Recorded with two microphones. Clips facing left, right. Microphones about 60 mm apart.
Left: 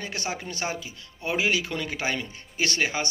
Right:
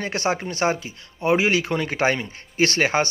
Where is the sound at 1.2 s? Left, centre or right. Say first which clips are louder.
Right 6 dB; right.